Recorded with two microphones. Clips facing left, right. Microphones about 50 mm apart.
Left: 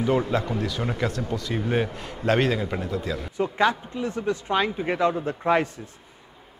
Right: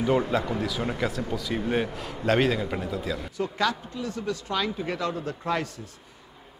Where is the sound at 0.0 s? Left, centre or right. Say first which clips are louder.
Left 1 dB; centre.